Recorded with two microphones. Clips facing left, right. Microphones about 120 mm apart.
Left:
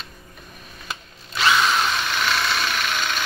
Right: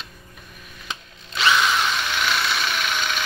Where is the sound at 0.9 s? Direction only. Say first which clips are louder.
Even; 5° left (ahead or behind).